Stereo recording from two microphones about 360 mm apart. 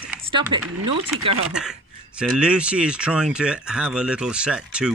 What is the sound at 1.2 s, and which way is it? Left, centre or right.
Speech, right.